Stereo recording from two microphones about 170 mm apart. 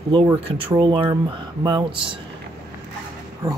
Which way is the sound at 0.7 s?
30° right (ahead or behind).